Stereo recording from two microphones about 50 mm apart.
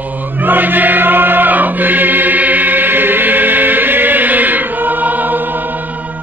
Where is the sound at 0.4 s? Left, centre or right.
Right.